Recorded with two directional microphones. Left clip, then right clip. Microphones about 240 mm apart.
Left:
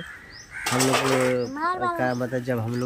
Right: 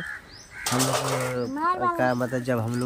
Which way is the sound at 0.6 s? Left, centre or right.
Right.